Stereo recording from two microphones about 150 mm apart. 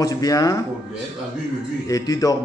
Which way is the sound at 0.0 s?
25° left (ahead or behind).